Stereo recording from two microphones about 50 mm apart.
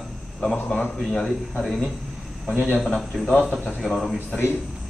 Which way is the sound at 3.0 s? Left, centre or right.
Centre.